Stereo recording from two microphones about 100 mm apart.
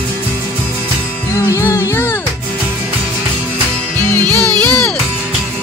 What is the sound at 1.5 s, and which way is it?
Music, 30° left (ahead or behind).